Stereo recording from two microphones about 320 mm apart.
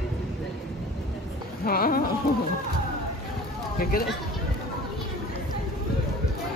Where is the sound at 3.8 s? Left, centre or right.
Left.